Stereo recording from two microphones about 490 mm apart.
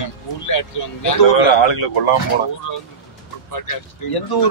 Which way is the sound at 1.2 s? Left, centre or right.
Left.